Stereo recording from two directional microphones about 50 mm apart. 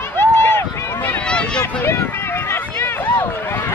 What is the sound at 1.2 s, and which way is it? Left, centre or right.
Run, centre.